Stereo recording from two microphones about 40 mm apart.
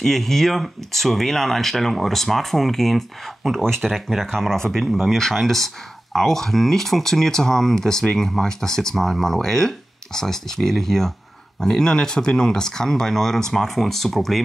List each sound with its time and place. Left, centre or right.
0.0 s speech: centre